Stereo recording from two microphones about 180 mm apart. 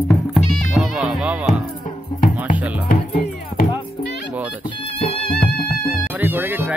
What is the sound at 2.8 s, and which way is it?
Music, 55° left (ahead or behind).